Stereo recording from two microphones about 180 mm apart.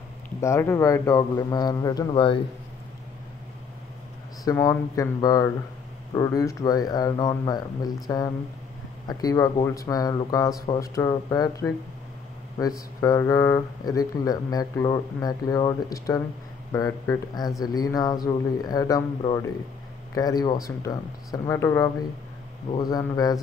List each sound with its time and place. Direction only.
0.4 s speech: 15° left (ahead or behind)
4.5 s speech: 20° left (ahead or behind)